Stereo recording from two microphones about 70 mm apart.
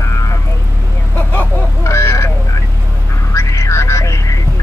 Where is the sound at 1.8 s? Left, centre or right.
Left.